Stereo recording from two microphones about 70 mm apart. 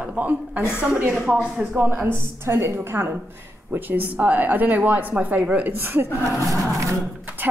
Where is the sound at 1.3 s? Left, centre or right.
Centre.